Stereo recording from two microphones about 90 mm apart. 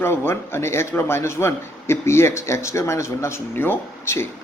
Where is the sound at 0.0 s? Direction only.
25° left (ahead or behind).